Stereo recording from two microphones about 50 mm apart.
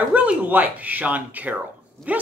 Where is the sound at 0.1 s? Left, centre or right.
Right.